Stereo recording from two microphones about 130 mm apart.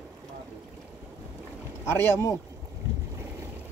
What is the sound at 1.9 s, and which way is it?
Speech, 20° left (ahead or behind).